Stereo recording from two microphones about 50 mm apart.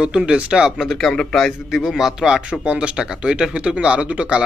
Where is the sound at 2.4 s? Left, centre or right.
Right.